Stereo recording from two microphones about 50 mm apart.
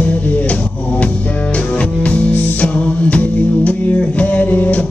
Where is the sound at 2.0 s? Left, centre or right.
Left.